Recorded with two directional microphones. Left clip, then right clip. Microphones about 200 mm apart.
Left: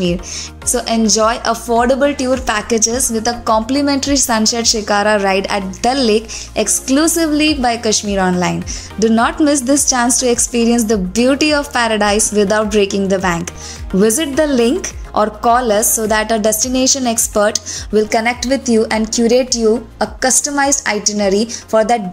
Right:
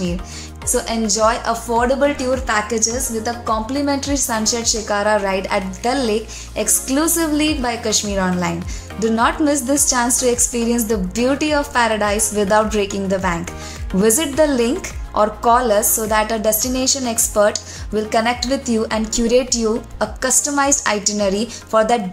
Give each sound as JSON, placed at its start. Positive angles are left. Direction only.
{"t": 0.7, "sound": "a woman's voice", "side_deg": 25}